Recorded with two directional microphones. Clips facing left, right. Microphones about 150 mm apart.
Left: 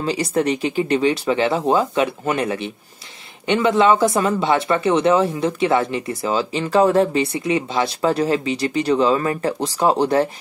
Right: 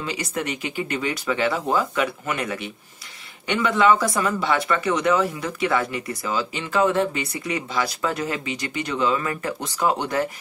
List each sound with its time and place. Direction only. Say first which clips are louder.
0.0 s speech: left 8 dB; 35° left (ahead or behind)